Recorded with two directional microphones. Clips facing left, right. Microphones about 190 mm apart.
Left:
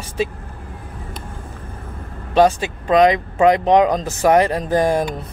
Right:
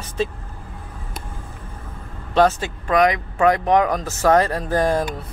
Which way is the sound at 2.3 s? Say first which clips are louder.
Left 3 dB; 15° left (ahead or behind).